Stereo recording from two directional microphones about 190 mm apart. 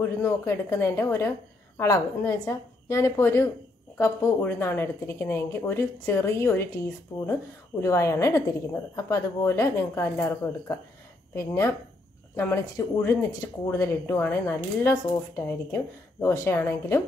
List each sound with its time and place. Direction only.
0.2 s speech: 15° left (ahead or behind)
7.1 s speech: 25° left (ahead or behind)
7.8 s speech: 15° left (ahead or behind)